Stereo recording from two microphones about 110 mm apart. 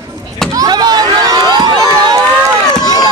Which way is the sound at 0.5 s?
35° right (ahead or behind).